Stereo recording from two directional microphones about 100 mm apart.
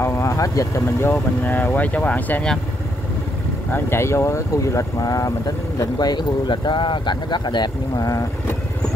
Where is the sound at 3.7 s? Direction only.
25° left (ahead or behind).